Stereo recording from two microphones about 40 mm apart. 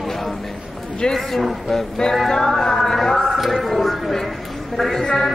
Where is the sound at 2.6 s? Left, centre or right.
Centre.